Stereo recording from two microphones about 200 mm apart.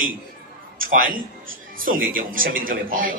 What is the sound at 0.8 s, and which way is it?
Speech, 45° right (ahead or behind).